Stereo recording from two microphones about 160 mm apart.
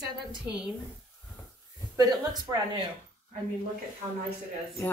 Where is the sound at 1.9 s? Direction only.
20° right (ahead or behind).